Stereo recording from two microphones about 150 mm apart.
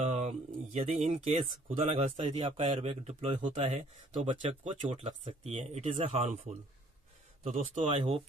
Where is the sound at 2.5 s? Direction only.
50° right (ahead or behind).